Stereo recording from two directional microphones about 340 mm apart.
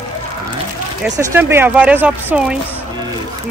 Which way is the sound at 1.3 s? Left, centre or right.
Centre.